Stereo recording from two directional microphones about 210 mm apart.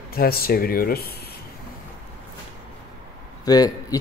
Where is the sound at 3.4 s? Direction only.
20° left (ahead or behind).